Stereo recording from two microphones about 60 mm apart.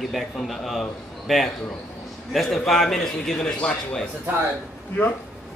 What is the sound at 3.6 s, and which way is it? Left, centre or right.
Speech, centre.